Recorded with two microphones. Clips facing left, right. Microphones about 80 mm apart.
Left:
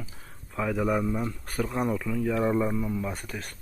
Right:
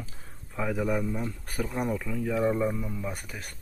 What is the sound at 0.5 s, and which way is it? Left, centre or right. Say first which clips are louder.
Speech: left 2 dB; centre.